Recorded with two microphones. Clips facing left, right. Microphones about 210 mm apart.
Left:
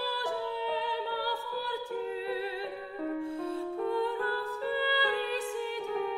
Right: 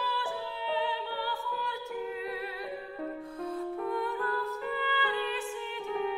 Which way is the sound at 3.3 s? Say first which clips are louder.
Left 1 dB; 30° left (ahead or behind).